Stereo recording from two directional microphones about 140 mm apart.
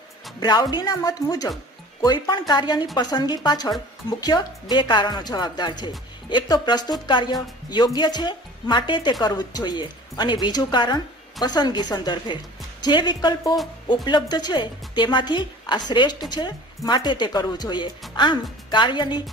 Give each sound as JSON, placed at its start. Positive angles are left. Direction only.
{"t": 0.4, "sound": "a woman's voice", "side_deg": 30}